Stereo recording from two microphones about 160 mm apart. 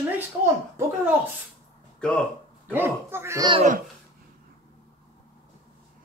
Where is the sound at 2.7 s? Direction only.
15° right (ahead or behind).